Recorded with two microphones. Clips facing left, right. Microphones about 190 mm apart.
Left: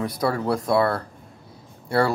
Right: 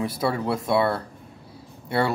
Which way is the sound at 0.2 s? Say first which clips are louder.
Left 3 dB; 25° right (ahead or behind).